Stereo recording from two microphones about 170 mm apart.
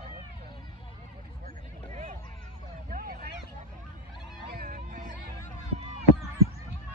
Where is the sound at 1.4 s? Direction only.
50° right (ahead or behind).